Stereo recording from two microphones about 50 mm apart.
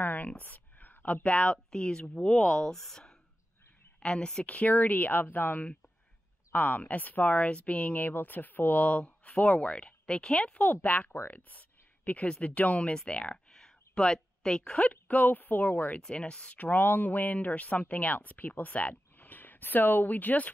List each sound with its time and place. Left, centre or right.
0.0 s a woman's voice: left; by 4.5 s centre
4.5 s speech: left
11.3 s a sound: left
12.3 s speech: left
12.9 s a sound: left
14.8 s speech: left
16.0 s speech: left